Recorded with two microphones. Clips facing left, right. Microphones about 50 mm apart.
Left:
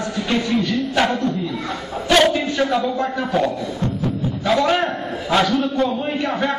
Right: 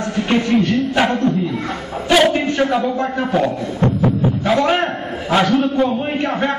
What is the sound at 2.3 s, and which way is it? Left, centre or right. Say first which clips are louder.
Speech: right 2 dB; right.